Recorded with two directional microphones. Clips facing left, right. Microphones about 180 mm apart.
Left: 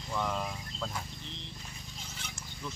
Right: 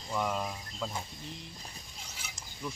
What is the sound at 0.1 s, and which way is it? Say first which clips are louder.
Speech: right 1 dB; 10° right (ahead or behind).